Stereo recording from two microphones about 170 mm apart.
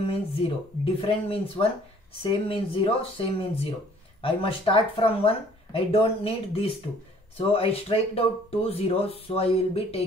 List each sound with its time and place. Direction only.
0.4 s speech: 35° left (ahead or behind)